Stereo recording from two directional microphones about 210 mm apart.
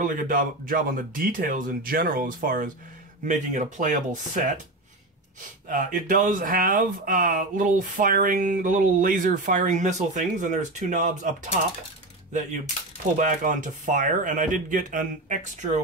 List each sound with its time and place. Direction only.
0.0 s speech: 40° right (ahead or behind)
5.7 s speech: 40° right (ahead or behind)
13.2 s speech: 35° right (ahead or behind)